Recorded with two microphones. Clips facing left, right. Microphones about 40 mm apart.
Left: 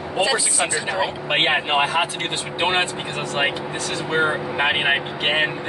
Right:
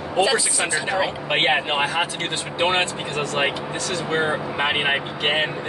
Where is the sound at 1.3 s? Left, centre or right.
Centre.